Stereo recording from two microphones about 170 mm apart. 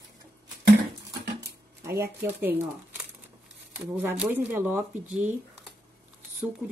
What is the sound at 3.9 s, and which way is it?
Speech, 5° right (ahead or behind).